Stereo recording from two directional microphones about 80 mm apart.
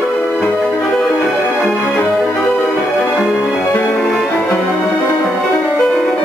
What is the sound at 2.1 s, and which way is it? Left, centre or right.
Music, centre.